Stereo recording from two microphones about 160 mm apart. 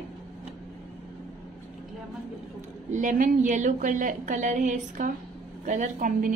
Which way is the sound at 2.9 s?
55° right (ahead or behind).